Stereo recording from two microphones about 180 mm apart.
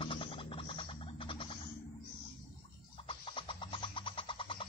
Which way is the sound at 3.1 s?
30° left (ahead or behind).